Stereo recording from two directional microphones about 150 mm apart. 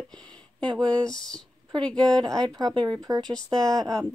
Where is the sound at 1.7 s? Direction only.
30° right (ahead or behind).